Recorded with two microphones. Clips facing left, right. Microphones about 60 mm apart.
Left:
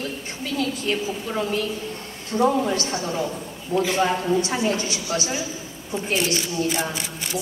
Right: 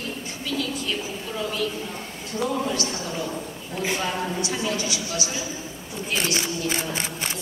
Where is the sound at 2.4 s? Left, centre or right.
Left.